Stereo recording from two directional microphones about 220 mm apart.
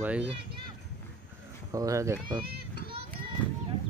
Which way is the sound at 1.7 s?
15° right (ahead or behind).